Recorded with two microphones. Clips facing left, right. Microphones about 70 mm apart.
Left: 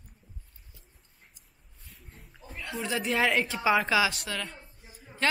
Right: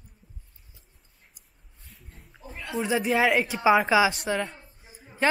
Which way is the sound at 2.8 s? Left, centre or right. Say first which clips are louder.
Right 4 dB; centre.